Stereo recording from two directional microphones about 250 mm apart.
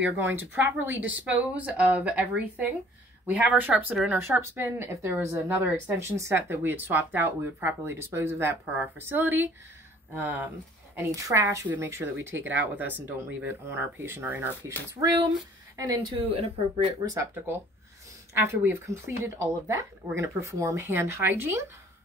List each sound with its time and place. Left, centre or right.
0.0 s speech: centre